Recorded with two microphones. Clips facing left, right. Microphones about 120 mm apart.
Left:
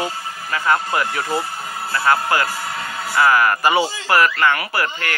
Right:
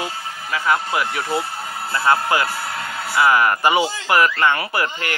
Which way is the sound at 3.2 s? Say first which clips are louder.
Even; 20° right (ahead or behind).